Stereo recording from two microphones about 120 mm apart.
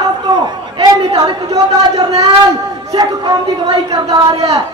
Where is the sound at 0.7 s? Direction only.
40° right (ahead or behind).